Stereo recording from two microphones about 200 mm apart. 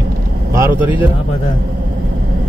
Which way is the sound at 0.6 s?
10° right (ahead or behind).